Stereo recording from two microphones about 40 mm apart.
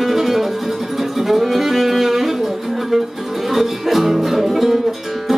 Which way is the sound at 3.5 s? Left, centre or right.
Centre.